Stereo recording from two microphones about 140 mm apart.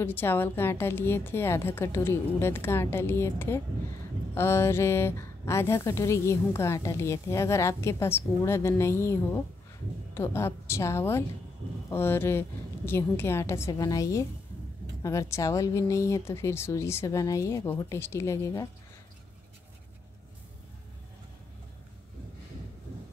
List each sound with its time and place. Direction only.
0.0 s a woman's voice: 15° left (ahead or behind)